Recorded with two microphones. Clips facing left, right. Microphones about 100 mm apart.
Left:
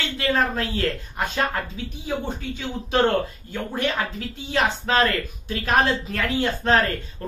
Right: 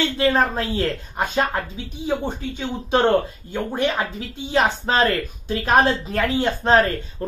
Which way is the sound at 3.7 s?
20° right (ahead or behind).